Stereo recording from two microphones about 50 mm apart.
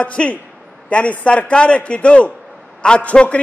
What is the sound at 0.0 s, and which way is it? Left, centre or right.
A man's voice, left.